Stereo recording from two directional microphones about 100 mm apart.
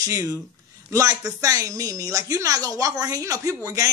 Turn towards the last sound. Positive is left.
turn(degrees=-35)  # may be behind; listen again after turning